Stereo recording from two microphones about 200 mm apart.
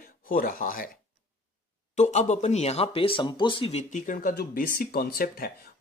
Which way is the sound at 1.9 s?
35° left (ahead or behind).